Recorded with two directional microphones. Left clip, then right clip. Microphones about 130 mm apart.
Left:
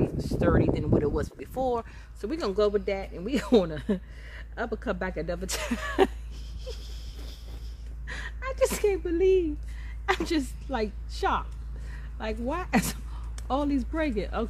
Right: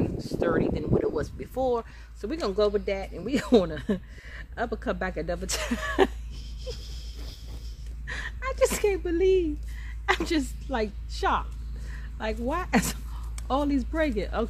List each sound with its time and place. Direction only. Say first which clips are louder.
0.2 s a woman's voice: even; 50° left (ahead or behind); by 6.8 s 25° left (ahead or behind)
8.1 s a woman's voice: right 3 dB; 20° left (ahead or behind)